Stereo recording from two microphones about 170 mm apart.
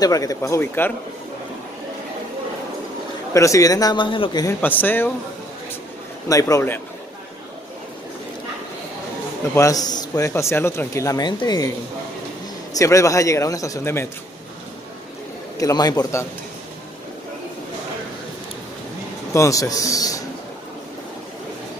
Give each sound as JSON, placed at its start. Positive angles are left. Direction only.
{"t": 0.0, "sound": "speech", "side_deg": 20}
{"t": 3.3, "sound": "a man's voice", "side_deg": 20}
{"t": 4.6, "sound": "speech", "side_deg": 10}
{"t": 6.2, "sound": "a man's voice", "side_deg": 20}
{"t": 9.6, "sound": "a man's voice", "side_deg": 20}
{"t": 12.7, "sound": "a man's voice", "side_deg": 20}
{"t": 15.6, "sound": "a man's voice", "side_deg": 25}
{"t": 19.3, "sound": "a man's voice", "side_deg": 20}